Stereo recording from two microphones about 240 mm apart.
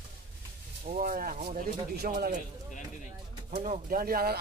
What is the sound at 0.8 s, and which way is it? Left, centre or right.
Speech, right.